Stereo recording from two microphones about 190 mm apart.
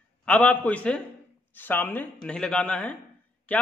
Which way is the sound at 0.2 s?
5° left (ahead or behind).